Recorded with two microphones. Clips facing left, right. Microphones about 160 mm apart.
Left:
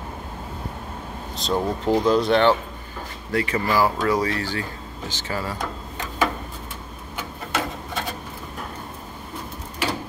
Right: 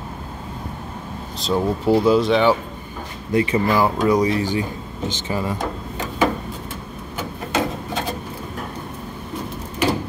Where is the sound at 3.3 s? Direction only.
20° right (ahead or behind).